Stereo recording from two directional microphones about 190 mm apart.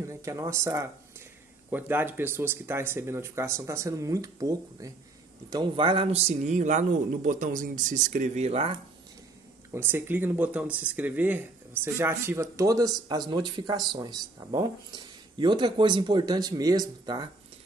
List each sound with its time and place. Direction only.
0.0 s speech: 15° right (ahead or behind); by 8.7 s 30° right (ahead or behind)
9.7 s speech: 10° right (ahead or behind)